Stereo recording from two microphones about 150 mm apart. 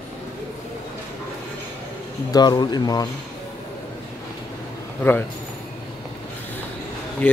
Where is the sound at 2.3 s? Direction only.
30° left (ahead or behind).